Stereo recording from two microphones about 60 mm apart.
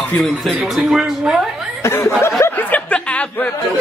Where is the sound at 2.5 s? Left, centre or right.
Left.